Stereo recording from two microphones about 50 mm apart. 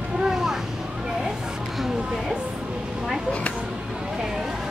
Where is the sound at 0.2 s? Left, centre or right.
Centre.